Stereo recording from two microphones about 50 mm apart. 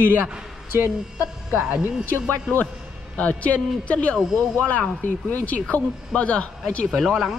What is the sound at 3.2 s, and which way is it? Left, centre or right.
A man's voice, left.